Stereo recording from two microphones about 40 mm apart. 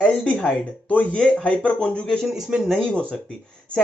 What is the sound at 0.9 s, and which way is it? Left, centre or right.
Speech, left.